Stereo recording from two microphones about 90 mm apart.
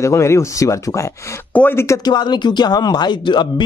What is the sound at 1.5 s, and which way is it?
Speech, 15° left (ahead or behind).